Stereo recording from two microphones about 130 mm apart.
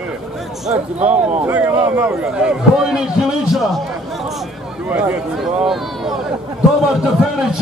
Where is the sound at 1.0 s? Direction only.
15° right (ahead or behind).